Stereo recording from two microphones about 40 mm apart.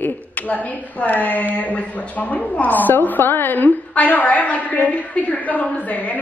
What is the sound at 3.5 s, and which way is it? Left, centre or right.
A woman's voice, left.